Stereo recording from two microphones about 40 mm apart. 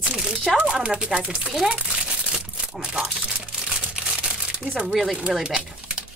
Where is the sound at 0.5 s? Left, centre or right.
Right.